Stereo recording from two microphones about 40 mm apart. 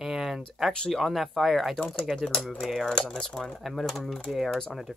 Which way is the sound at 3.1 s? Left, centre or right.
Centre.